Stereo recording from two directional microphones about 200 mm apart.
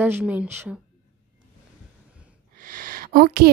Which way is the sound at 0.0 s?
10° right (ahead or behind).